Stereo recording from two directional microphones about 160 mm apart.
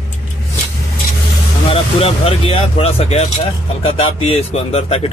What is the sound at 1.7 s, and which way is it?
Speech, 40° left (ahead or behind).